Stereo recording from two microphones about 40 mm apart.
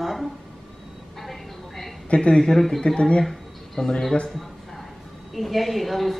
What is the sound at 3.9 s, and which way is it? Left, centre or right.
Speech, centre.